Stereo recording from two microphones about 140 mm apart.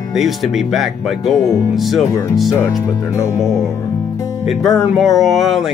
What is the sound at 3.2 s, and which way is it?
Music, 20° left (ahead or behind).